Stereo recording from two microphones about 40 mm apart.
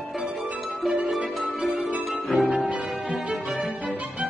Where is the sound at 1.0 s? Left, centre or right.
Centre.